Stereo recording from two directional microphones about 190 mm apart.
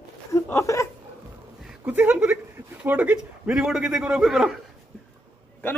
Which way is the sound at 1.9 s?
10° right (ahead or behind).